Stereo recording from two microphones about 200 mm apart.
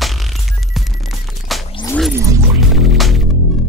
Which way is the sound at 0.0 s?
Centre (ahead or behind).